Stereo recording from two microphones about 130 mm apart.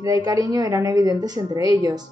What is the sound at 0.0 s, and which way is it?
Speech, 30° right (ahead or behind).